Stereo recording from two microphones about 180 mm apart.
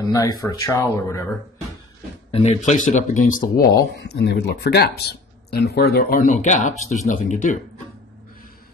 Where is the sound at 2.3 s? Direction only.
35° left (ahead or behind); by 6.3 s 55° left (ahead or behind).